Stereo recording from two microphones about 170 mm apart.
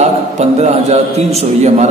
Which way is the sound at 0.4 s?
40° right (ahead or behind).